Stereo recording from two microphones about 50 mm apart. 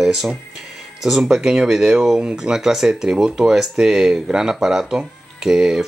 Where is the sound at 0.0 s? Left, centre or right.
Centre.